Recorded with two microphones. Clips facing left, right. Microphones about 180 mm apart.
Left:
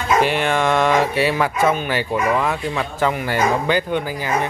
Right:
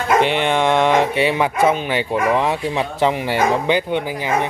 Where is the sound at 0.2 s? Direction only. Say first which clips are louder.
Right 1 dB; 20° right (ahead or behind).